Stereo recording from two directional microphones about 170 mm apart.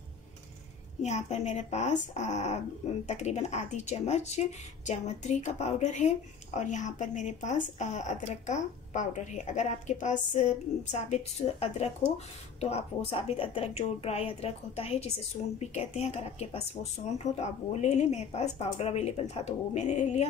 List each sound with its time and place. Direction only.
1.0 s speech: 45° left (ahead or behind)